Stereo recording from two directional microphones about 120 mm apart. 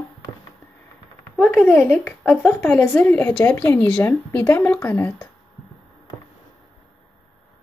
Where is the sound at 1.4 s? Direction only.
15° left (ahead or behind).